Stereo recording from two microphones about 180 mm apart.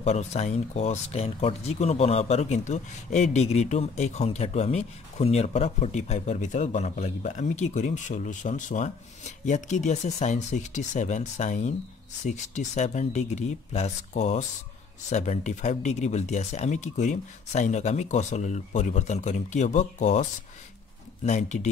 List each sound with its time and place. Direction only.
0.0 s speech: 40° left (ahead or behind)